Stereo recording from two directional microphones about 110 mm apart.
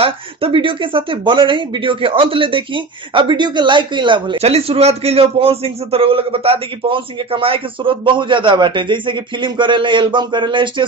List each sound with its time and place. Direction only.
0.0 s a man's voice: 55° right (ahead or behind)
4.4 s a man's voice: 65° right (ahead or behind); by 10.9 s 45° right (ahead or behind)